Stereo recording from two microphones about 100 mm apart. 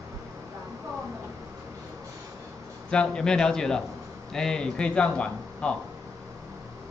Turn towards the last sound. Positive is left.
turn(degrees=10)  # may be behind; listen again after turning